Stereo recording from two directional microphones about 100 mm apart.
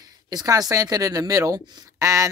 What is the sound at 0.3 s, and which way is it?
Speech, 40° right (ahead or behind).